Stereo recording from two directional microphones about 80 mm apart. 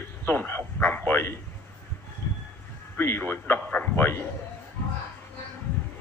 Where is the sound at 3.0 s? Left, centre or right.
Left.